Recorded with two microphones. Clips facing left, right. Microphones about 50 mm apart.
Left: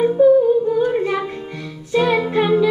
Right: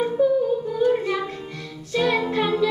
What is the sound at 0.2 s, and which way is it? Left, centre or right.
Humming, left.